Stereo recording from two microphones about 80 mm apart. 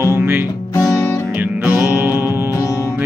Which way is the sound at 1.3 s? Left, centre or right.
Centre.